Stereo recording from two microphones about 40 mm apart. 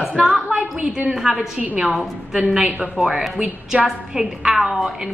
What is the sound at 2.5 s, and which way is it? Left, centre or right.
A woman's voice, right.